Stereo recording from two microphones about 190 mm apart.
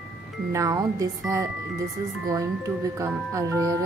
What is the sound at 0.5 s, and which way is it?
Speech, 15° right (ahead or behind).